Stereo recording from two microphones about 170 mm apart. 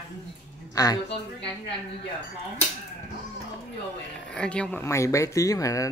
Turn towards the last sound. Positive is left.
turn(degrees=20)  # may be behind; listen again after turning